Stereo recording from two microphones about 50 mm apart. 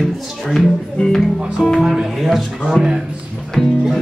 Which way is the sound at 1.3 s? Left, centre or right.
Centre.